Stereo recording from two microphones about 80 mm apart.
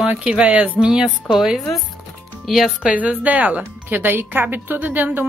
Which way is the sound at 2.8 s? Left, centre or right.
Centre.